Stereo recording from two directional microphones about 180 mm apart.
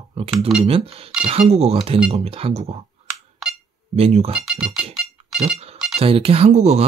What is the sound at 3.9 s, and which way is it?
Speech, 35° right (ahead or behind).